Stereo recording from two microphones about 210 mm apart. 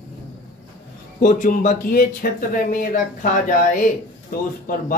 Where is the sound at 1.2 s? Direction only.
35° left (ahead or behind).